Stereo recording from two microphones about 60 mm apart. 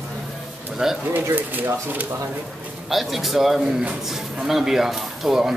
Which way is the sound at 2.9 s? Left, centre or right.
Centre.